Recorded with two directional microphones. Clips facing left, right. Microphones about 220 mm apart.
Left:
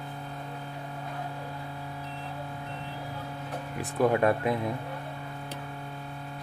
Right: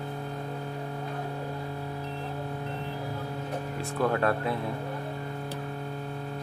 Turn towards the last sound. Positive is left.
turn(degrees=15)  # may be behind; listen again after turning